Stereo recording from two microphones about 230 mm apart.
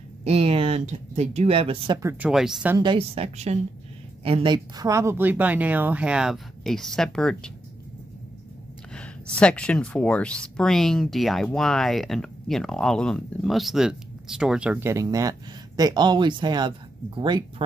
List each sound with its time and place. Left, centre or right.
0.2 s speech: right; by 2.8 s centre
2.8 s speech: right; by 7.5 s centre
8.9 s speech: centre; by 17.6 s right